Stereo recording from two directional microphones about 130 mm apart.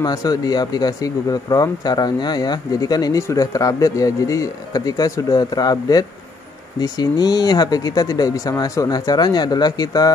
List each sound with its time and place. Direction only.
0.0 s speech: 30° left (ahead or behind)